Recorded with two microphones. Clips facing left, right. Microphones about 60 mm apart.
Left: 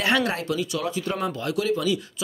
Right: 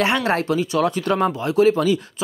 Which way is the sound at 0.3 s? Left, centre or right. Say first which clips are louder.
Right 7 dB; right.